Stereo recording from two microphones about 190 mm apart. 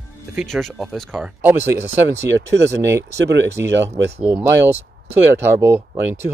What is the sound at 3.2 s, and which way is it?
Speech, 70° right (ahead or behind).